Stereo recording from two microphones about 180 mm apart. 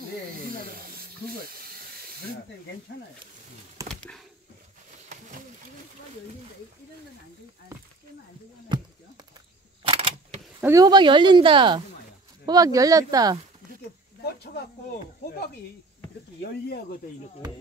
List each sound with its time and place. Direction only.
0.4 s snake: 50° right (ahead or behind)
1.5 s steam: 55° right (ahead or behind)
3.9 s a sound: 5° left (ahead or behind)
8.6 s a sound: 25° right (ahead or behind)
9.8 s camera: 30° right (ahead or behind)
10.6 s speech: 20° right (ahead or behind)
14.2 s snake: 65° left (ahead or behind)
15.2 s speech: 60° left (ahead or behind)
16.6 s speech: 55° left (ahead or behind)